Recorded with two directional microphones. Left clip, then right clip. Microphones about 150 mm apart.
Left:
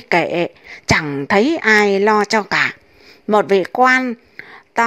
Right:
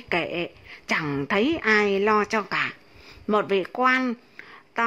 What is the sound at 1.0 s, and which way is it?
Speech, 15° left (ahead or behind).